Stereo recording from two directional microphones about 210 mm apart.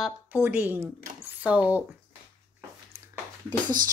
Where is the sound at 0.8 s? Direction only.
35° right (ahead or behind).